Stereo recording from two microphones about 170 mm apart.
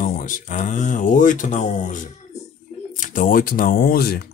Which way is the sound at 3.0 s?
50° left (ahead or behind).